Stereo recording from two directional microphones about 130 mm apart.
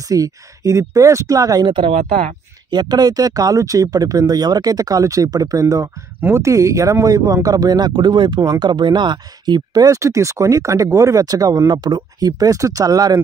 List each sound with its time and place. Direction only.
0.0 s speech: 25° right (ahead or behind)